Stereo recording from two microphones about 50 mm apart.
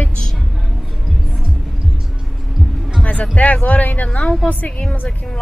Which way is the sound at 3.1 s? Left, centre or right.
Left.